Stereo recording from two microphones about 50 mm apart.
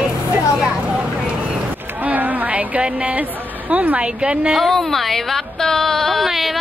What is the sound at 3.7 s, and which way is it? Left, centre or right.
Speech, right.